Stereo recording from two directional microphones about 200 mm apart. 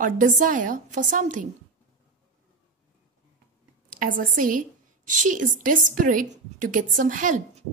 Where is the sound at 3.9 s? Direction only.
45° right (ahead or behind).